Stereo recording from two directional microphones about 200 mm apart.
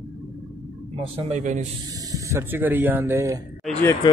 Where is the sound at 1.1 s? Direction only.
35° right (ahead or behind).